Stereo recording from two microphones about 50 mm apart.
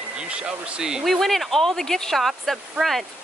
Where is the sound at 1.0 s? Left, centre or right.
Centre.